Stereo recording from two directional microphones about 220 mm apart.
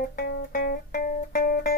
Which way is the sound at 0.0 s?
45° left (ahead or behind).